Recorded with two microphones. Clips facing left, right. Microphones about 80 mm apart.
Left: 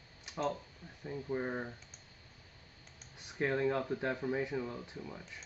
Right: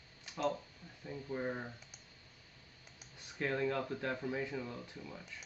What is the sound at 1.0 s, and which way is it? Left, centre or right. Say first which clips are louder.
Speech: left 2 dB; centre.